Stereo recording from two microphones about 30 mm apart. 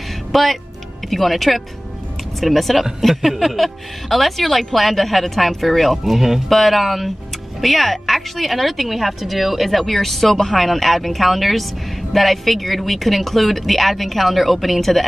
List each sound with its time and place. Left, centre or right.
0.3 s a woman's voice: centre